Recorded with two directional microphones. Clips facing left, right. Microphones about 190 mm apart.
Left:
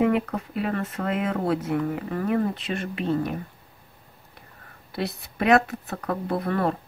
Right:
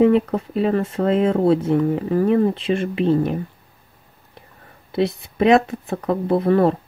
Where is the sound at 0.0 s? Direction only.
30° right (ahead or behind).